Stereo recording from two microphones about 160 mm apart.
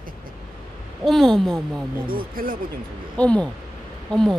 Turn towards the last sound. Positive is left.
turn(degrees=5)  # may be behind; listen again after turning